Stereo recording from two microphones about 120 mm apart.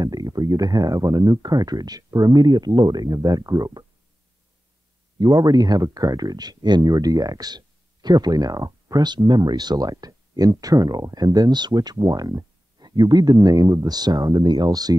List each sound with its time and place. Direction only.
0.0 s speech: 30° right (ahead or behind)
5.2 s speech: 35° right (ahead or behind)